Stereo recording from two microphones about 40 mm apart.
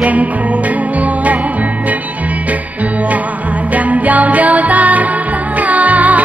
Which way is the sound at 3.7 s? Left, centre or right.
Right.